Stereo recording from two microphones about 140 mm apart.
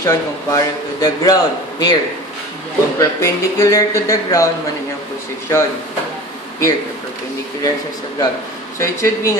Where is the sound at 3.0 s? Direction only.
25° left (ahead or behind).